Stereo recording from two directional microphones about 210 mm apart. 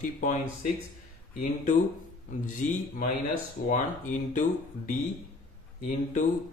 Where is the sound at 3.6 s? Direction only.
35° left (ahead or behind).